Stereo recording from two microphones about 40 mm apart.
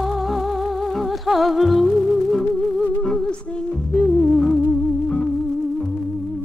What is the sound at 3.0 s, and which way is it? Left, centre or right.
Music, centre.